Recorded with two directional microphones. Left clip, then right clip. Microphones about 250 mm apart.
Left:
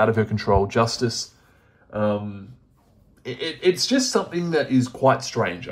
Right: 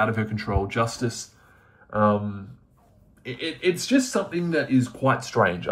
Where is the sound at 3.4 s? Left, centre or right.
Centre.